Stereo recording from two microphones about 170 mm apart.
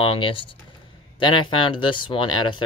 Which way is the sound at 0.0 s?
30° left (ahead or behind).